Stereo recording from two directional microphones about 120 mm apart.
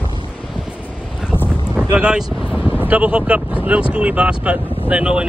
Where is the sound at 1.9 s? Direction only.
10° right (ahead or behind).